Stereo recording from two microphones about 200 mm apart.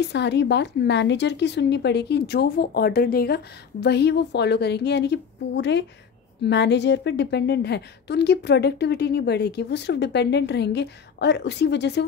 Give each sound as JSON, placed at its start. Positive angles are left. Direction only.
{"t": 0.0, "sound": "a woman's voice", "side_deg": 60}